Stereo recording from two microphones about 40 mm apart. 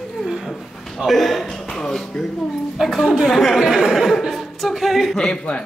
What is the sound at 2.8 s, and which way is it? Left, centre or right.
Speech, centre.